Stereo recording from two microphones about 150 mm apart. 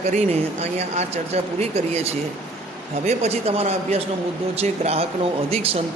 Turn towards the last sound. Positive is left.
turn(degrees=-40)  # may be behind; listen again after turning